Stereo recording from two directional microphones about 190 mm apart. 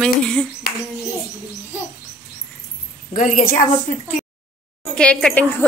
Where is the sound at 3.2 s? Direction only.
45° left (ahead or behind).